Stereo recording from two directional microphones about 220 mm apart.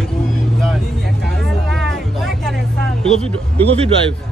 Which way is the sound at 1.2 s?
Centre (ahead or behind).